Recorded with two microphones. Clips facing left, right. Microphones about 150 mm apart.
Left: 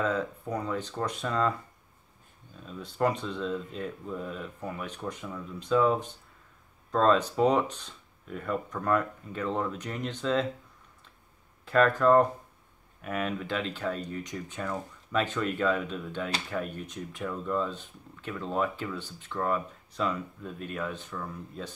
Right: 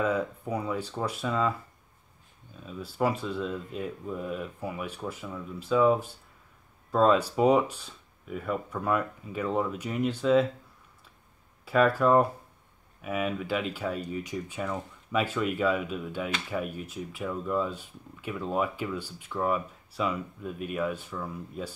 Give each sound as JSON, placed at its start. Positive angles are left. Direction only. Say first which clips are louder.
{"t": 0.0, "sound": "speech", "louder": "right 2 dB", "side_deg": -10}
{"t": 2.6, "sound": "speech", "louder": "even", "side_deg": -5}
{"t": 11.6, "sound": "speech", "louder": "even", "side_deg": -10}